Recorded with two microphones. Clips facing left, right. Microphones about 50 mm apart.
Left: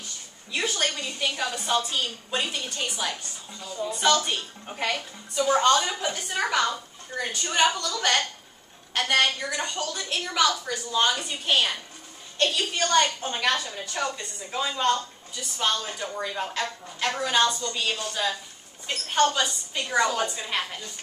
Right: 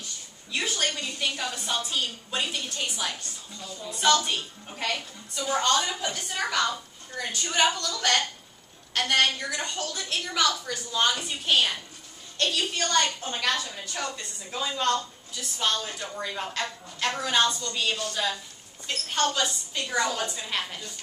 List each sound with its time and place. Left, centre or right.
0.5 s a woman's voice: centre
4.6 s a woman's voice: centre
18.9 s a woman's voice: centre